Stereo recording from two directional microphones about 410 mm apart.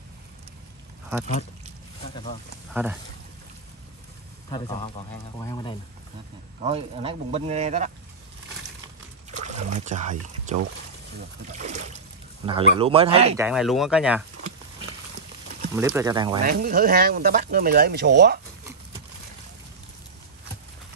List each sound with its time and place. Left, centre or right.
2.7 s speech: centre
4.5 s speech: centre
6.6 s speech: centre
9.3 s rowboat: centre
11.1 s speech: centre
13.5 s speech: centre
15.7 s speech: centre
16.4 s speech: right